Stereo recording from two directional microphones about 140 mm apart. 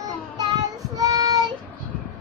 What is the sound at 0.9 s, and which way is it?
Child singing, 25° right (ahead or behind).